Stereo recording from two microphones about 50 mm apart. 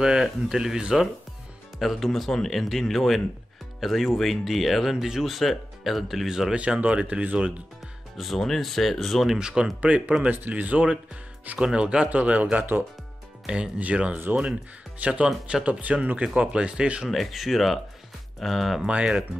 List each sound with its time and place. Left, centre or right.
0.0 s speech: centre
6.5 s speech: right
8.2 s speech: centre
9.4 s speech: centre
9.8 s speech: right
17.1 s speech: centre
18.9 s speech: right